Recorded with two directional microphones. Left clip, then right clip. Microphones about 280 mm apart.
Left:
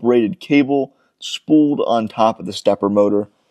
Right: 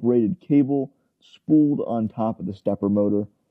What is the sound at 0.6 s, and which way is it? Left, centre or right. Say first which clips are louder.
Speech: left 7 dB; left.